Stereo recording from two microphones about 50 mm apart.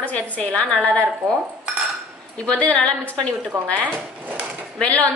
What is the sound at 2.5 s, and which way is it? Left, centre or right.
Speech, left.